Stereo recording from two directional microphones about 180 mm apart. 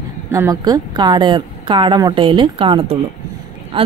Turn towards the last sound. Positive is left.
turn(degrees=-30)  # may be behind; listen again after turning